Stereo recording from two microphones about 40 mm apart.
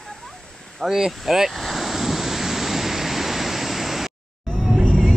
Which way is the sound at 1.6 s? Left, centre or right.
Centre.